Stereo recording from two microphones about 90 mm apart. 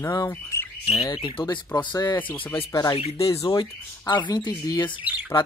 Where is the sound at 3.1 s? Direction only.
90° left.